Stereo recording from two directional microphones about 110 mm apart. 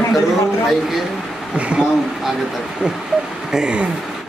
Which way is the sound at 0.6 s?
Centre (ahead or behind).